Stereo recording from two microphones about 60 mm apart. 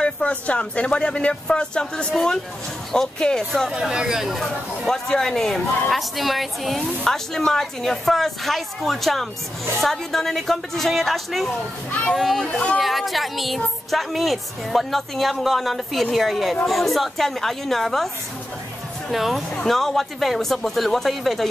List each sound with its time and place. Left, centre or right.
0.0 s speech: left
3.9 s a woman's voice: centre
12.4 s speech: centre
12.7 s a woman's voice: centre